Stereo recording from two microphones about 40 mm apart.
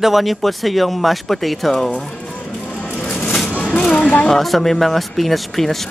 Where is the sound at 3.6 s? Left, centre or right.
Centre.